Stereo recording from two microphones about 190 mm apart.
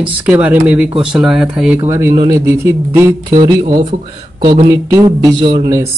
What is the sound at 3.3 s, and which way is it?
Speech, 25° right (ahead or behind).